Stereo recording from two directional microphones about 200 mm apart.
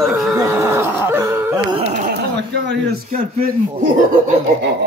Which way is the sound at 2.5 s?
55° right (ahead or behind).